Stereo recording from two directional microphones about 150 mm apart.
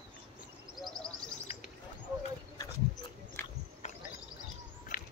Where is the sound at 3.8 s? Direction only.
50° left (ahead or behind).